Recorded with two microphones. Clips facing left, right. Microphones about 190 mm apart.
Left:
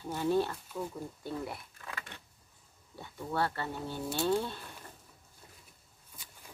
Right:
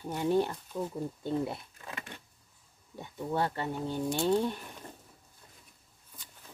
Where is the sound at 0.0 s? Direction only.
15° right (ahead or behind).